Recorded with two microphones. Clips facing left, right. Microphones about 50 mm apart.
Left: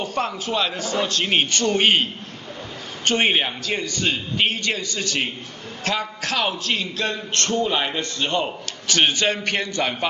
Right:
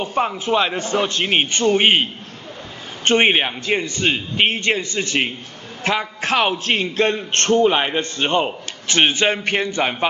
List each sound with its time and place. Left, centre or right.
0.0 s a man's voice: centre
3.1 s a man's voice: right